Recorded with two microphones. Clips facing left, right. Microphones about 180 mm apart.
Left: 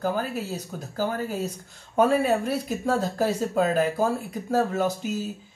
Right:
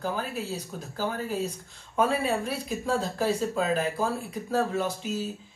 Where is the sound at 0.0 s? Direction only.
45° left (ahead or behind).